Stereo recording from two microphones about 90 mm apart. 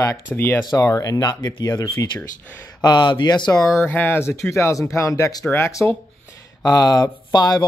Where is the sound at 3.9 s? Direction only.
25° left (ahead or behind); by 5.4 s 40° left (ahead or behind).